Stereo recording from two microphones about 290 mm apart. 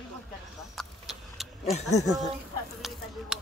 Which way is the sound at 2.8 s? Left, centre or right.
Centre.